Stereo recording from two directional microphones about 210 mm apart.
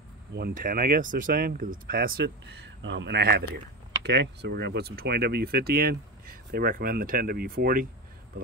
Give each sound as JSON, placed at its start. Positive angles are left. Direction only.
{"t": 0.3, "sound": "speech", "side_deg": -45}